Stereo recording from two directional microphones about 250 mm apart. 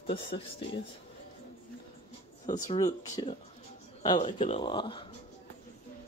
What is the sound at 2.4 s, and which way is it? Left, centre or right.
Speech, left.